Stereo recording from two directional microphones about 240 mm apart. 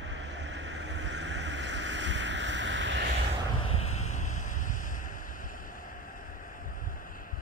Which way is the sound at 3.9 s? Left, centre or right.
Left.